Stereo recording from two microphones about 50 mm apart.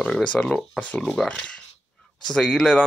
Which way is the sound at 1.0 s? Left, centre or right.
Centre.